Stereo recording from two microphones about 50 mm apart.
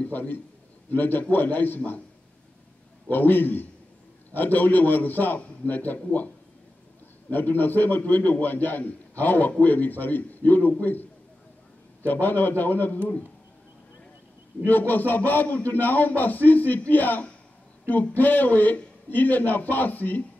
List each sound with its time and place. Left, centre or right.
0.1 s a man's voice: left
3.1 s a man's voice: left
7.2 s a man's voice: left
12.1 s a man's voice: left
14.7 s a man's voice: left